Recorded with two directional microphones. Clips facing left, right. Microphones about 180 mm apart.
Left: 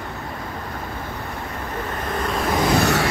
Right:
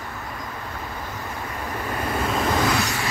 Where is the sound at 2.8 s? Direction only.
70° left (ahead or behind).